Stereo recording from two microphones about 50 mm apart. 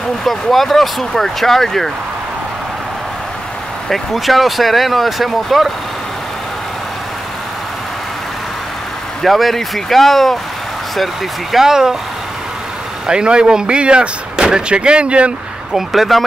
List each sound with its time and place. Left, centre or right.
0.2 s speech: centre
3.9 s speech: centre
9.2 s speech: centre
11.5 s speech: centre
13.0 s speech: centre
15.7 s speech: centre